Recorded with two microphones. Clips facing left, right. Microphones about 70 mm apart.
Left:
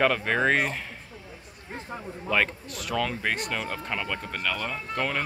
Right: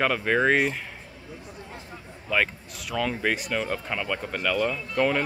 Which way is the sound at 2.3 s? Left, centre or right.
Centre.